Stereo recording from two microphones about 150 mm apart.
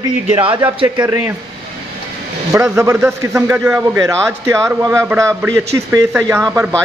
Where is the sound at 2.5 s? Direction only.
20° right (ahead or behind).